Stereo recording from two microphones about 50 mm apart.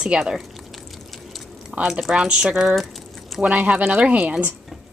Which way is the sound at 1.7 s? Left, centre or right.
Right.